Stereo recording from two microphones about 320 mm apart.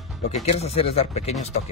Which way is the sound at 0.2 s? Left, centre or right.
Centre.